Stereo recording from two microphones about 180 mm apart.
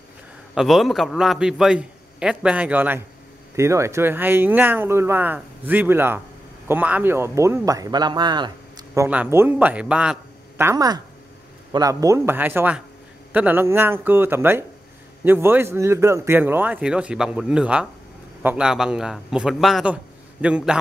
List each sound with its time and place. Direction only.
0.6 s a man's voice: centre (ahead or behind)
10.6 s a man's voice: 20° right (ahead or behind)